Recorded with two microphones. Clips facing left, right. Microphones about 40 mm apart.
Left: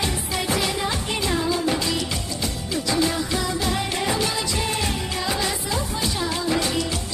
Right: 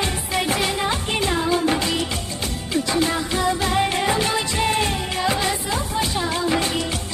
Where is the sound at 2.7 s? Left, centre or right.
Right.